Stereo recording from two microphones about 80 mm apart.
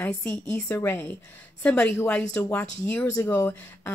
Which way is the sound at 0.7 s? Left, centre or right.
Left.